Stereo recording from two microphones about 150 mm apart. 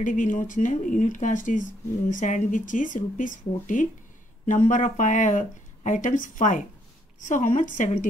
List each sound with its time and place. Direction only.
0.0 s speech: 60° left (ahead or behind)